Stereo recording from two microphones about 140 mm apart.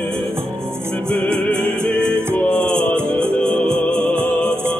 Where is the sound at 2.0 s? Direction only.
15° right (ahead or behind).